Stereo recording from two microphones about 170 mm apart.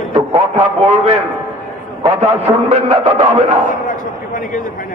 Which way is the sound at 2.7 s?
35° right (ahead or behind).